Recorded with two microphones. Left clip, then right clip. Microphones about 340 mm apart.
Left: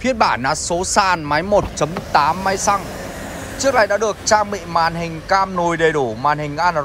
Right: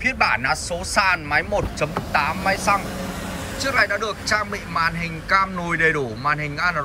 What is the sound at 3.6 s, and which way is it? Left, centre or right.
Speech, centre.